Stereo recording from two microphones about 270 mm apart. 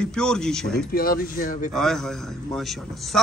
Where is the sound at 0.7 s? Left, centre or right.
Left.